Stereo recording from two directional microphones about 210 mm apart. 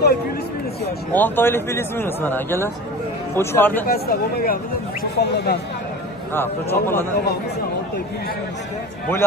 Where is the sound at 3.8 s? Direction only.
45° left (ahead or behind).